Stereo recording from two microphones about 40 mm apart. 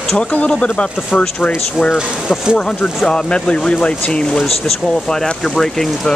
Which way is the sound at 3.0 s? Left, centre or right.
Left.